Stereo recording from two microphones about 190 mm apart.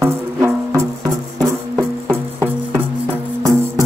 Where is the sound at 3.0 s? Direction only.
15° right (ahead or behind).